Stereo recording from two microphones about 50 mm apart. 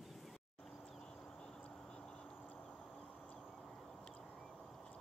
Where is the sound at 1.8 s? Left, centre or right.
Centre.